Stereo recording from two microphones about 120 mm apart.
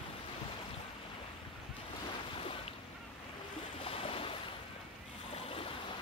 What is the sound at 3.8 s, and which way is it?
Boat, 50° left (ahead or behind).